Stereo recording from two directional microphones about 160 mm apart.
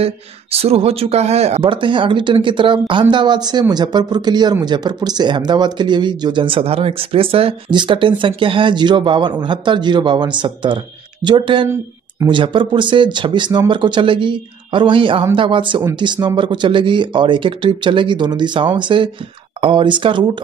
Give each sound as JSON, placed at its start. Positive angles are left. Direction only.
{"t": 0.0, "sound": "speech", "side_deg": -40}